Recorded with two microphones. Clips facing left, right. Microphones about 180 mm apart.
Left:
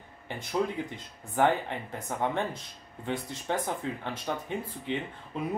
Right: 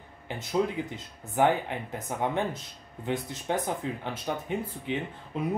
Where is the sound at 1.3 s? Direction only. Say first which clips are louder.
Right 1 dB; 15° right (ahead or behind).